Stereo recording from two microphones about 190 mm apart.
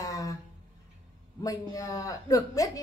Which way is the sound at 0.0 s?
20° left (ahead or behind).